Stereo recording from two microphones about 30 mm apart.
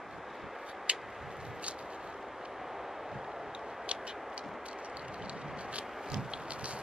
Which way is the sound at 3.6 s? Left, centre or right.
Centre.